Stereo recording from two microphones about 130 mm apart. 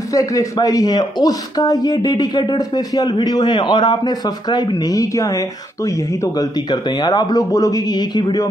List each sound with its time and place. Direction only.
0.1 s speech: 25° left (ahead or behind)
6.7 s speech: 30° left (ahead or behind)